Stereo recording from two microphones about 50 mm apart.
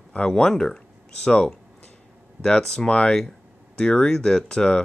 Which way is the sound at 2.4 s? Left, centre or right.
Centre.